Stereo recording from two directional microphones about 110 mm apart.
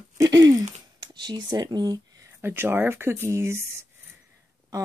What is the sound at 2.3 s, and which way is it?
Speech, 20° right (ahead or behind).